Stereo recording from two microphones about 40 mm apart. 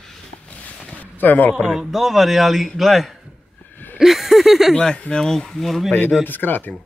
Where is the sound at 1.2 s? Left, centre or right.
Left.